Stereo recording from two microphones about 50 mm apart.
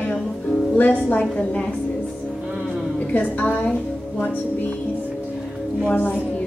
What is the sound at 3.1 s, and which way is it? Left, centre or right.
Speech, left.